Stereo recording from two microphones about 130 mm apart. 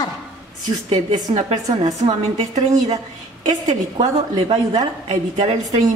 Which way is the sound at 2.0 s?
55° right (ahead or behind).